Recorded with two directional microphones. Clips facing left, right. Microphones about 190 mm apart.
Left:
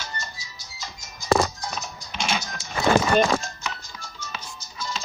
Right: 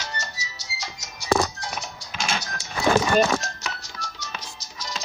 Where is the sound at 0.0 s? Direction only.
75° right (ahead or behind).